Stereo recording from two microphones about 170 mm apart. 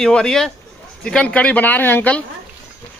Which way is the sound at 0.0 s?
5° left (ahead or behind).